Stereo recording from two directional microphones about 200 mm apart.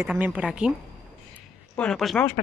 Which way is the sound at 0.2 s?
5° right (ahead or behind).